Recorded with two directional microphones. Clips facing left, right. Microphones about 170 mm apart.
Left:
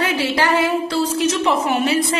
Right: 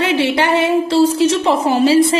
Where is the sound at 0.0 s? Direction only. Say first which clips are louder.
Right 5 dB; 25° right (ahead or behind).